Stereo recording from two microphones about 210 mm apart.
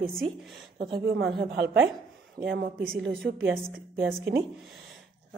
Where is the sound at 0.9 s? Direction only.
50° right (ahead or behind).